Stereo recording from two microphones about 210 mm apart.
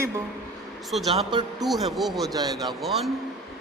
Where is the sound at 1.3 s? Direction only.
20° right (ahead or behind).